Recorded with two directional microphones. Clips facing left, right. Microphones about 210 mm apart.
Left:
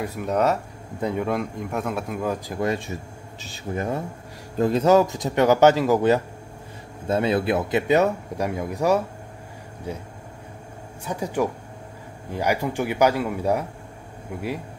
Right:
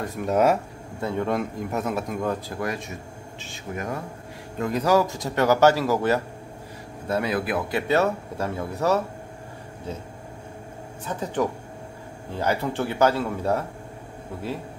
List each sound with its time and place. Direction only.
0.0 s a man's voice: 5° left (ahead or behind)
1.3 s a man's voice: centre (ahead or behind)
2.5 s a man's voice: 25° left (ahead or behind)
11.1 s speech: 10° left (ahead or behind)